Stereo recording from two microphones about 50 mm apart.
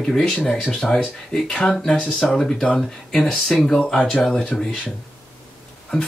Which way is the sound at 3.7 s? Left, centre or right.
Left.